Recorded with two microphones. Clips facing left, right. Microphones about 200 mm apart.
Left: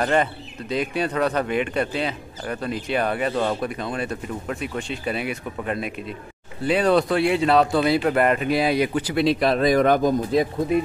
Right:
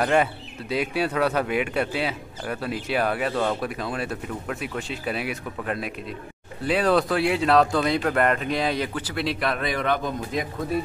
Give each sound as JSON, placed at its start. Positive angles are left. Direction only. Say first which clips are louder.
{"t": 0.0, "sound": "speech", "louder": "even", "side_deg": -5}
{"t": 9.6, "sound": "speech", "louder": "left 8 dB", "side_deg": 40}